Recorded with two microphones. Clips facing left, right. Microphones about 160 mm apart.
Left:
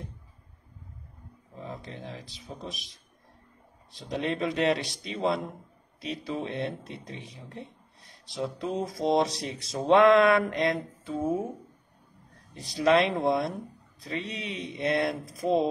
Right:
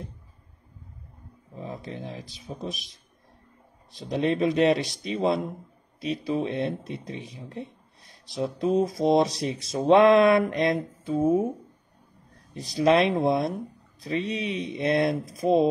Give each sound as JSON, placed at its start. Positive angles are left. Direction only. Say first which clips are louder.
{"t": 1.6, "sound": "a sound", "louder": "right 4 dB", "side_deg": -20}
{"t": 2.4, "sound": "speech", "louder": "right 6 dB", "side_deg": -25}
{"t": 4.2, "sound": "speech", "louder": "right 6 dB", "side_deg": -20}
{"t": 12.7, "sound": "speech", "louder": "right 3 dB", "side_deg": -25}